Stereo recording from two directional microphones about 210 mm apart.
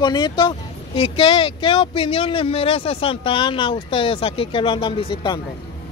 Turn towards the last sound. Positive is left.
turn(degrees=20)  # may be behind; listen again after turning